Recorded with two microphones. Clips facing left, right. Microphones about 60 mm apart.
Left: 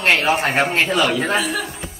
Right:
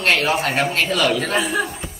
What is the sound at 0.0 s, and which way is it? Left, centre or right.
Speech, left.